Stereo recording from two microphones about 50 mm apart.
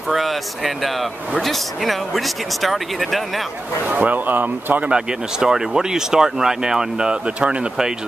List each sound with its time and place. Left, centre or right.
0.1 s speech: centre
3.8 s a man's voice: right
4.8 s speech: centre